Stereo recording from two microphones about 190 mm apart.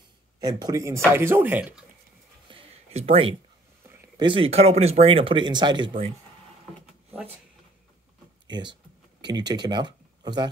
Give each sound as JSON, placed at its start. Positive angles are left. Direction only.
{"t": 0.4, "sound": "speech", "side_deg": -20}
{"t": 2.5, "sound": "a sound", "side_deg": -35}
{"t": 4.2, "sound": "speech", "side_deg": -25}
{"t": 8.5, "sound": "speech", "side_deg": -25}